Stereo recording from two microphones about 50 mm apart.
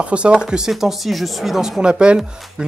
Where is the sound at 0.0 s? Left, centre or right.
Right; by 1.8 s centre.